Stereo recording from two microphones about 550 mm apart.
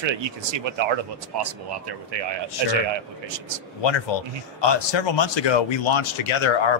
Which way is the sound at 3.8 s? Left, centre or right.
Left.